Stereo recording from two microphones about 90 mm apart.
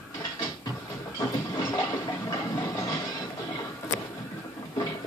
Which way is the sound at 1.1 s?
40° left (ahead or behind).